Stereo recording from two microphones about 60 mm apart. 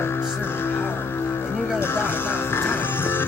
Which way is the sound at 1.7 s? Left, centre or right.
Left.